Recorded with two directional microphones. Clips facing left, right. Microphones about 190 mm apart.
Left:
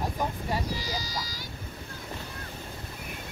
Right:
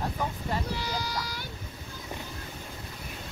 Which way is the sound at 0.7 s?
60° right (ahead or behind).